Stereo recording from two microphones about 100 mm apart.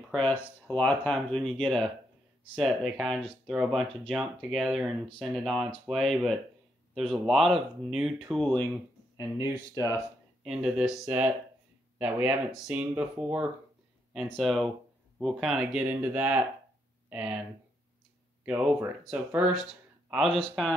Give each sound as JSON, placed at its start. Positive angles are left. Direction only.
{"t": 0.1, "sound": "speech", "side_deg": 15}
{"t": 9.1, "sound": "speech", "side_deg": 40}
{"t": 10.4, "sound": "speech", "side_deg": -5}
{"t": 11.1, "sound": "speech", "side_deg": -15}
{"t": 14.2, "sound": "speech", "side_deg": 5}
{"t": 15.8, "sound": "speech", "side_deg": -15}
{"t": 18.4, "sound": "speech", "side_deg": -10}